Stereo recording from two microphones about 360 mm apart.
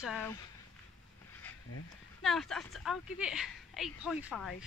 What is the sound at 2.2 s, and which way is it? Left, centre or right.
Speech, centre.